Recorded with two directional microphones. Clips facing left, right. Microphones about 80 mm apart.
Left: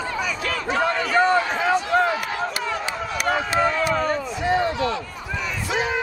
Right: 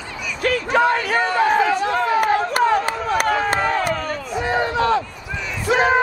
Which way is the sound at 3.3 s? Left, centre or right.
Right.